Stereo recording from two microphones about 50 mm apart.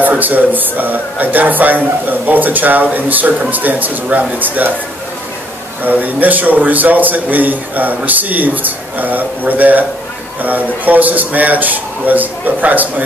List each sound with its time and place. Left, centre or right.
0.0 s a man's voice: right
5.9 s a man's voice: right